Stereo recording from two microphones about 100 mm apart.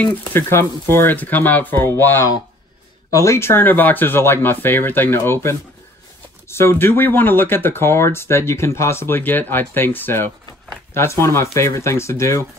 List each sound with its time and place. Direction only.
0.0 s speech: 20° left (ahead or behind)
3.1 s speech: 30° left (ahead or behind)